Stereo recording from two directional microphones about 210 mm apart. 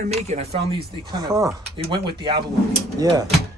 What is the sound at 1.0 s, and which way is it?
Speech, 20° right (ahead or behind).